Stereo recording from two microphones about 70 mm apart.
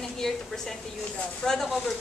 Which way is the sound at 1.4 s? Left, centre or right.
Centre.